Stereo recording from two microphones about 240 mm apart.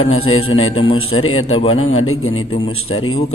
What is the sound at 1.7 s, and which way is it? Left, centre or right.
Speech, left.